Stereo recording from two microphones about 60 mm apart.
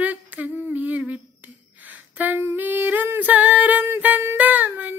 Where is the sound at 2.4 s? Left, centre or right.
Right.